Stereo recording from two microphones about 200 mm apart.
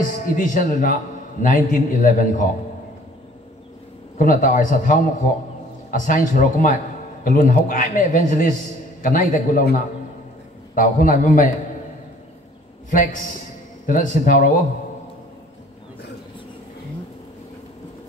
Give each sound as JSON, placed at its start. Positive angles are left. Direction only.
{"t": 0.3, "sound": "a man's voice", "side_deg": 40}
{"t": 4.2, "sound": "a man's voice", "side_deg": 40}
{"t": 12.9, "sound": "a man's voice", "side_deg": 40}